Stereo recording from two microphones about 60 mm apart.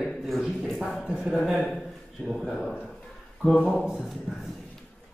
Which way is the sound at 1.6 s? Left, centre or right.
Centre.